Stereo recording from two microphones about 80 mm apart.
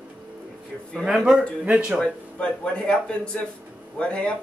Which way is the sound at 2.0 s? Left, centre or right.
Centre.